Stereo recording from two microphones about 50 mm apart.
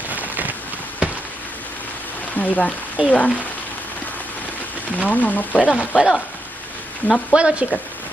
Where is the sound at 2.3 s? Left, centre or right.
Left.